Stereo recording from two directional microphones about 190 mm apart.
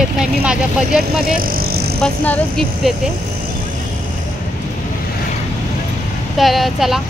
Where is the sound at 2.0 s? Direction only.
5° left (ahead or behind).